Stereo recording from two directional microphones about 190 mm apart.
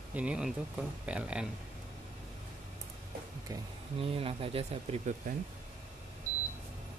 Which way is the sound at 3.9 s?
30° right (ahead or behind).